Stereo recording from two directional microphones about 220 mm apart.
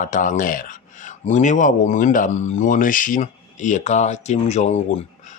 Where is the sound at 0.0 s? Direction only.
35° left (ahead or behind).